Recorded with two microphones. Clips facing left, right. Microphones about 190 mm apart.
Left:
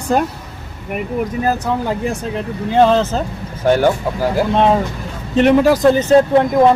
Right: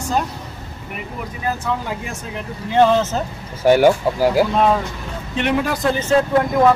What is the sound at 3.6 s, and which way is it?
Speech, 10° right (ahead or behind).